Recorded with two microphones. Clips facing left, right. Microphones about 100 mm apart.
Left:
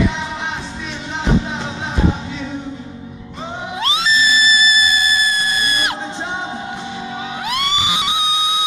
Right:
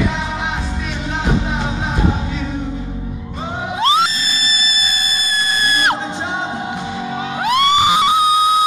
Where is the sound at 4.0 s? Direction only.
55° right (ahead or behind).